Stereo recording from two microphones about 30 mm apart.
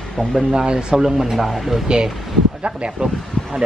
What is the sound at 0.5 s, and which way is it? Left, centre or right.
Speech, right.